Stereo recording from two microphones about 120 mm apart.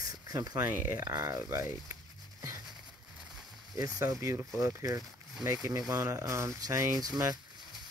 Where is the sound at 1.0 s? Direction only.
30° right (ahead or behind).